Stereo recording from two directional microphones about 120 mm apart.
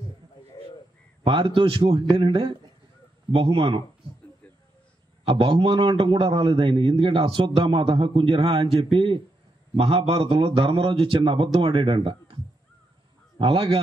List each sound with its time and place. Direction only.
1.2 s a man's voice: 45° right (ahead or behind)
5.2 s a man's voice: 40° right (ahead or behind)
13.4 s speech: 50° right (ahead or behind)